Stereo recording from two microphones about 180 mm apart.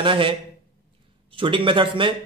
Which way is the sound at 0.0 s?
30° right (ahead or behind).